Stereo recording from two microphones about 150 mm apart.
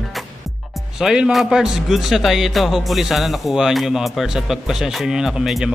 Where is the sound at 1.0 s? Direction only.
5° right (ahead or behind).